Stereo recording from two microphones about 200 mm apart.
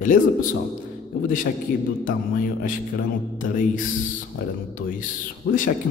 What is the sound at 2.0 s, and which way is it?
A man's voice, 45° left (ahead or behind).